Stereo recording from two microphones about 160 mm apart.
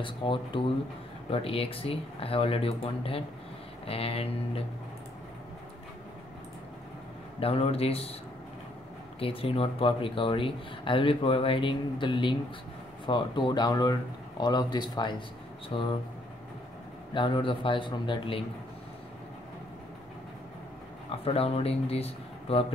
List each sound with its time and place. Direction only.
0.0 s speech: 30° left (ahead or behind)
7.3 s speech: 35° left (ahead or behind)
9.2 s a man's voice: 35° left (ahead or behind)
17.1 s a man's voice: 30° left (ahead or behind)
21.2 s speech: 35° left (ahead or behind)